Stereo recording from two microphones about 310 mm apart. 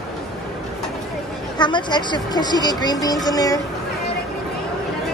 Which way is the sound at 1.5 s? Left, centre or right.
Centre.